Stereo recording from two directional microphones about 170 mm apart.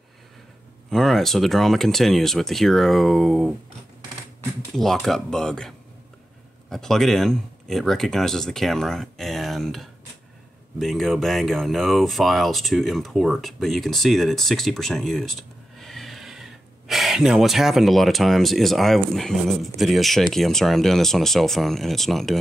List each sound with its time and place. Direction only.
0.8 s speech: centre (ahead or behind)
4.7 s speech: centre (ahead or behind)